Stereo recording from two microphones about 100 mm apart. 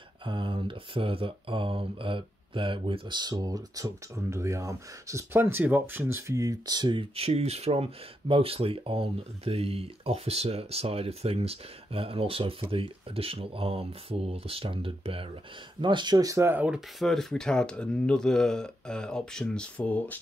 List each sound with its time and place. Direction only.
0.2 s speech: 60° right (ahead or behind)
7.2 s speech: 90° right; by 15.2 s 65° right (ahead or behind)
15.8 s speech: 50° right (ahead or behind); by 16.4 s 35° right (ahead or behind)
17.0 s speech: 5° left (ahead or behind)